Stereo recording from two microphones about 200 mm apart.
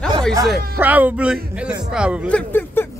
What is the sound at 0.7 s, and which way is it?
Speech, 10° right (ahead or behind).